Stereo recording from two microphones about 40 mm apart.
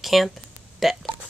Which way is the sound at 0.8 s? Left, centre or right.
Centre.